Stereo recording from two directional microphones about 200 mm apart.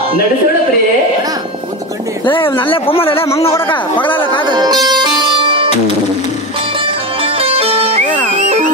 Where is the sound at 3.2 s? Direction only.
15° left (ahead or behind).